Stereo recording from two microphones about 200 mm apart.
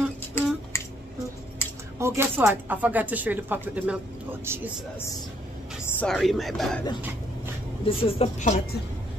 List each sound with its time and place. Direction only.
0.3 s finger snapping: 10° left (ahead or behind)
2.0 s speech: 10° right (ahead or behind)
5.9 s speech: 5° left (ahead or behind)
7.8 s speech: 25° left (ahead or behind)